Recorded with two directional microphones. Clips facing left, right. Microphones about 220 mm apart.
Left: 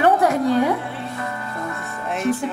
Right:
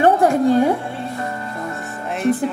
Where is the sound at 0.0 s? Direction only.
25° right (ahead or behind).